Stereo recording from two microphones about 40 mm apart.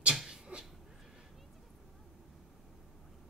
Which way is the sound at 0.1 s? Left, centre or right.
Centre.